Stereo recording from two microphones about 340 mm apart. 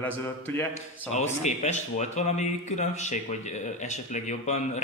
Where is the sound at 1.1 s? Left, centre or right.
Centre.